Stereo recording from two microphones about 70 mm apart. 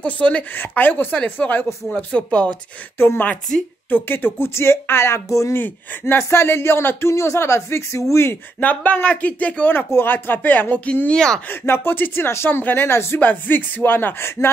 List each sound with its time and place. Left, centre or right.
0.0 s speech: centre
3.0 s speech: left
5.5 s speech: left
8.5 s speech: left
9.8 s speech: left
11.6 s speech: left
13.3 s speech: left